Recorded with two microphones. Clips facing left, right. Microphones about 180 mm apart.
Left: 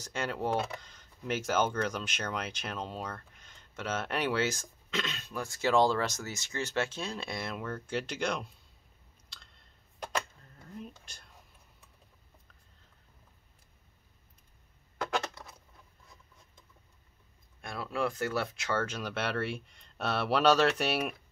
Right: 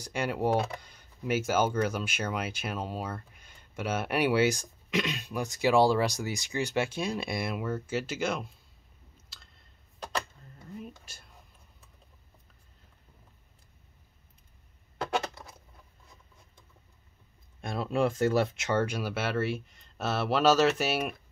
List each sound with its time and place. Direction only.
0.0 s speech: 10° right (ahead or behind)
10.6 s whispering: 5° right (ahead or behind)
15.4 s a sound: 20° right (ahead or behind)
17.6 s speech: 20° right (ahead or behind); by 21.2 s centre (ahead or behind)